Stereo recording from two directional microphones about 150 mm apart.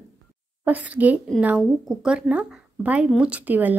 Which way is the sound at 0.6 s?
10° right (ahead or behind).